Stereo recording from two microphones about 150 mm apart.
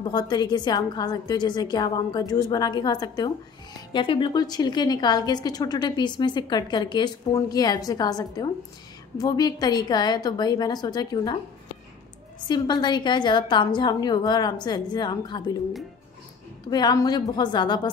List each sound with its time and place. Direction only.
0.0 s a woman's voice: 30° left (ahead or behind)
12.4 s a woman's voice: 30° left (ahead or behind)
16.7 s a woman's voice: 25° left (ahead or behind)